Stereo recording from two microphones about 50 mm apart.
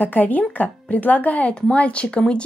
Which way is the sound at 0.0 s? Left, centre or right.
Left.